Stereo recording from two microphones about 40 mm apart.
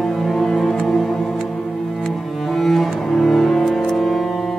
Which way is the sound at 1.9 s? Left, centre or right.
Centre.